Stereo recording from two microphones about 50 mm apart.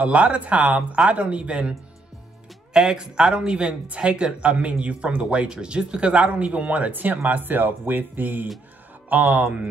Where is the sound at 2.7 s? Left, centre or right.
Centre.